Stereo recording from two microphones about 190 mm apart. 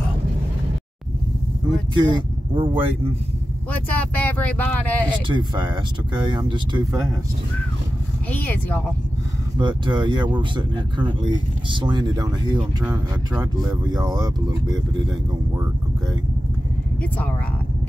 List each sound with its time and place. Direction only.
2.0 s speech: 25° right (ahead or behind)
3.9 s speech: 10° left (ahead or behind)
5.3 s speech: 25° right (ahead or behind)
8.3 s speech: 10° left (ahead or behind)
9.6 s speech: 25° right (ahead or behind)
12.8 s speech: 5° right (ahead or behind)
13.4 s speech: 20° right (ahead or behind)